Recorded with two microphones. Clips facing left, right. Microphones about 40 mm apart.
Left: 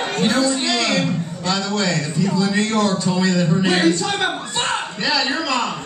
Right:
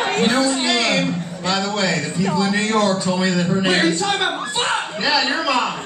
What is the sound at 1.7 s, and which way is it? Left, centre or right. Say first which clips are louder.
Speech: even; centre.